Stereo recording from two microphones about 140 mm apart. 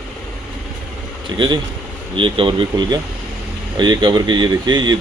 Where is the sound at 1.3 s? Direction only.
35° right (ahead or behind).